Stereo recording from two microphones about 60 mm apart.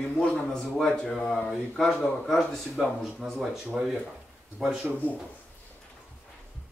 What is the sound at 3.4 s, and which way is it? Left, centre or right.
Speech, centre.